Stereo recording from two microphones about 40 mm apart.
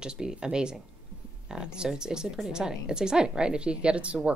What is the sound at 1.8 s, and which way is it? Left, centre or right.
A woman's voice, centre.